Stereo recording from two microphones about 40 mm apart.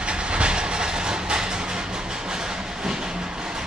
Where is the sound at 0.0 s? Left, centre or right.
Right.